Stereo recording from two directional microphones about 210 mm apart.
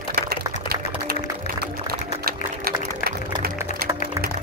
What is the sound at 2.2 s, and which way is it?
Music, 45° right (ahead or behind).